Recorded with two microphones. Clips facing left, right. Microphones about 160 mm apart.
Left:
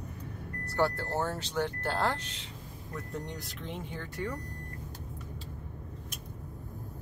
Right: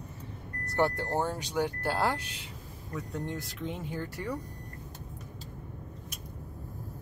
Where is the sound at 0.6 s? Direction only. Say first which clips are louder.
Right 1 dB; 20° right (ahead or behind).